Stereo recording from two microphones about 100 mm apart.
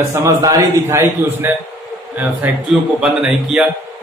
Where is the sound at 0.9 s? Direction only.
25° right (ahead or behind).